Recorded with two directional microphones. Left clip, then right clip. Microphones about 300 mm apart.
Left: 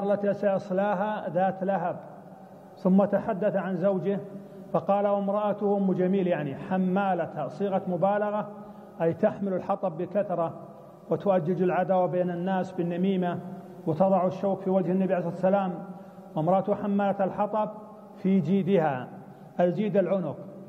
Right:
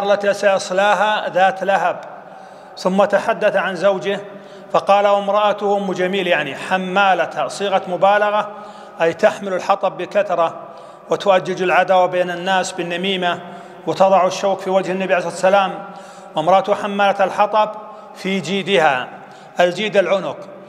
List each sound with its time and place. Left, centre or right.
0.0 s a man's voice: centre